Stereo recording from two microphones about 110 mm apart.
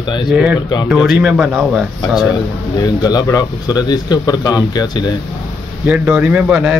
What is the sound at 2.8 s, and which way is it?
Speech, 35° left (ahead or behind).